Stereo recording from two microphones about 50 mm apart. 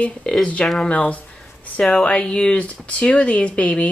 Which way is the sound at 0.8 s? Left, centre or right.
Left.